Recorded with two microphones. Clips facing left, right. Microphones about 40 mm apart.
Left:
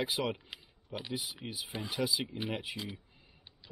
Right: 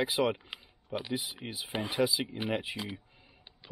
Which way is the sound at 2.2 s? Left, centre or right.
Centre.